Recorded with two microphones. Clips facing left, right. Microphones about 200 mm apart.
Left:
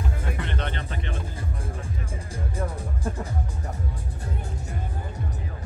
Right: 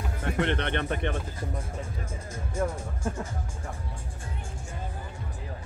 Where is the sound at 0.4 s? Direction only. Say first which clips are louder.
Right 5 dB; 65° right (ahead or behind).